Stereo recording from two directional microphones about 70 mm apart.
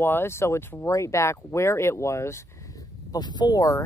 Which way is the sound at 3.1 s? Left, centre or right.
Left.